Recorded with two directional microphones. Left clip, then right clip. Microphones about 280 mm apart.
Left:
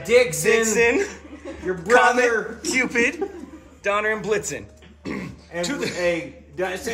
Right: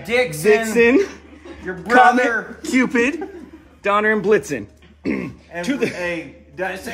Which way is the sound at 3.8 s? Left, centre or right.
Centre.